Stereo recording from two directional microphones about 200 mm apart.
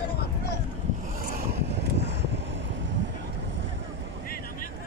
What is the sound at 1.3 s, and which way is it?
Vehicle, 55° right (ahead or behind).